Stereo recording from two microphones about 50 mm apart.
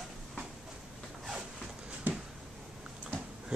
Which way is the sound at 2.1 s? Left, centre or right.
Right.